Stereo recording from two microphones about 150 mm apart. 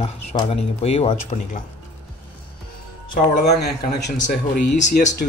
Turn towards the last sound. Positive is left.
turn(degrees=55)  # may be behind; listen again after turning